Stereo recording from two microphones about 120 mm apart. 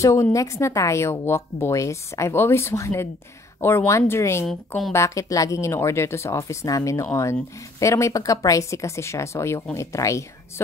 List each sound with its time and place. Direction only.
0.0 s speech: 25° left (ahead or behind)
4.5 s a woman's voice: 5° left (ahead or behind)
4.9 s speech: 25° left (ahead or behind)